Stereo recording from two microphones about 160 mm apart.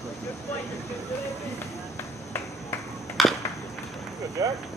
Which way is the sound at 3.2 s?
Centre (ahead or behind).